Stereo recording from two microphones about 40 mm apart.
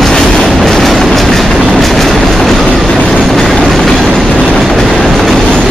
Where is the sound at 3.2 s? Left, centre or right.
Centre.